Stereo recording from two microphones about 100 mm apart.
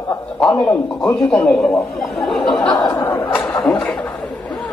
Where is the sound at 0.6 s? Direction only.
10° left (ahead or behind).